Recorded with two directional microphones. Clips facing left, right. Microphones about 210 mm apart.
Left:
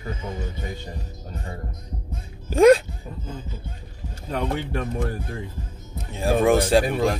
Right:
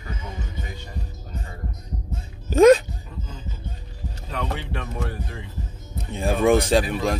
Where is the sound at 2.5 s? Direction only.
10° left (ahead or behind).